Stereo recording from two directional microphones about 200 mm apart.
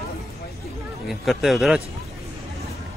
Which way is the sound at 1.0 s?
Centre (ahead or behind).